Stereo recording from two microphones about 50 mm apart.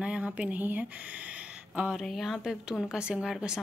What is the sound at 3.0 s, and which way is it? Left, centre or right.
Speech, centre.